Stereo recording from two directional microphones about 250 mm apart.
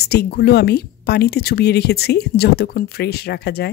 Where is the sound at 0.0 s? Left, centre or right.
Left.